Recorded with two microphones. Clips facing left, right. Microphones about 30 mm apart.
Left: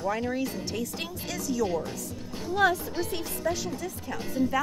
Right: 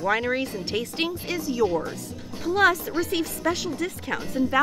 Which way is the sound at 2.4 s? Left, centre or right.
Right.